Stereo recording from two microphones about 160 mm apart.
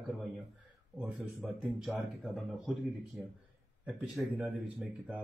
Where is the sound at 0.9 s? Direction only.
5° right (ahead or behind).